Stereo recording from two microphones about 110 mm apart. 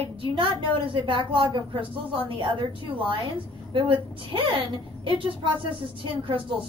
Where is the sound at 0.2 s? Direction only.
50° right (ahead or behind).